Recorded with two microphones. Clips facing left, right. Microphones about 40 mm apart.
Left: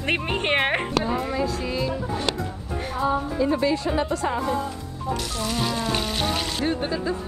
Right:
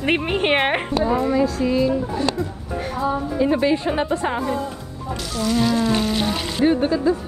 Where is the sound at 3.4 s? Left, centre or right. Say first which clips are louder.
Right 6 dB; right.